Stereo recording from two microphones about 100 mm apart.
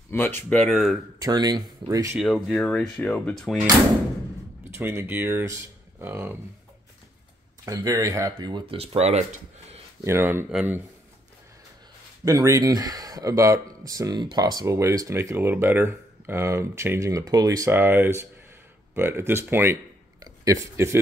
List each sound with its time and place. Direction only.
0.1 s speech: 20° left (ahead or behind)
0.7 s speech: centre (ahead or behind)
1.2 s speech: 40° right (ahead or behind)
2.1 s speech: centre (ahead or behind)
3.0 s speech: 10° left (ahead or behind)
4.7 s speech: 25° right (ahead or behind)
7.6 s speech: 35° right (ahead or behind)
8.7 s speech: 90° right
10.0 s speech: 25° right (ahead or behind)
12.3 s speech: 35° right (ahead or behind)
17.6 s speech: 20° right (ahead or behind)
20.2 s a sound: 35° right (ahead or behind)